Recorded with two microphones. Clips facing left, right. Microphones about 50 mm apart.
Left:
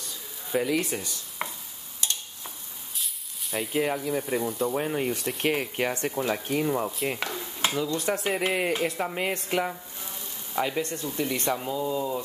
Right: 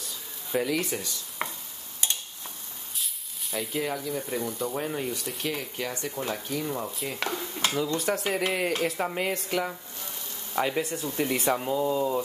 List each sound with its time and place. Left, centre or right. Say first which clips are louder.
0.0 s a sound: even; centre
3.0 s sizzle: even; centre
3.8 s speech: left 3 dB; left
4.2 s speech: left 3 dB; centre
4.7 s speech: left 3 dB; centre
5.4 s speech: left 7 dB; left
7.6 s speech: left 1 dB; centre
9.2 s speech: left 3 dB; centre
10.5 s speech: right 1 dB; centre